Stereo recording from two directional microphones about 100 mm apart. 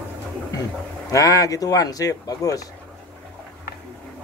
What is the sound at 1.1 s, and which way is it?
Speech, 35° left (ahead or behind).